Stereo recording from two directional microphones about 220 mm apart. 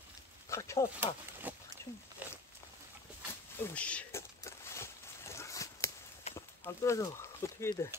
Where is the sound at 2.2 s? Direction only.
5° right (ahead or behind).